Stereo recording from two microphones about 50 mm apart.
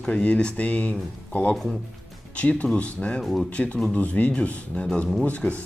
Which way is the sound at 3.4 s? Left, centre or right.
Left.